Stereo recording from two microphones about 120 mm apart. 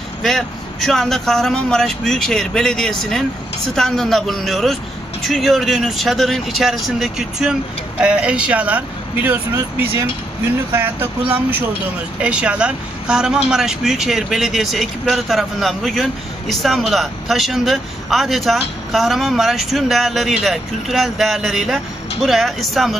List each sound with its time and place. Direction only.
0.2 s speech: centre (ahead or behind)